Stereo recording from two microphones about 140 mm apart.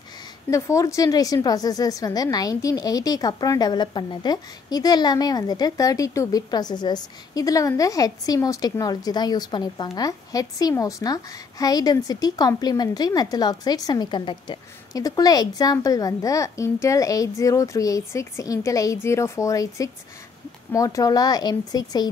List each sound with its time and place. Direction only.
0.5 s a woman's voice: 20° left (ahead or behind)